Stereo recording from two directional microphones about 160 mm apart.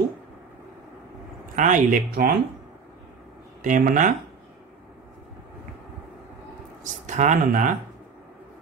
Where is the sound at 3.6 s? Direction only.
55° right (ahead or behind).